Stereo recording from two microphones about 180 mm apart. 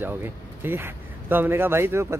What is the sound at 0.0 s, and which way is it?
Speech, 10° right (ahead or behind).